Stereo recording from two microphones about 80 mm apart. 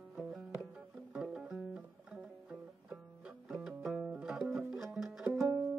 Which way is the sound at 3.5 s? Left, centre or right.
Centre.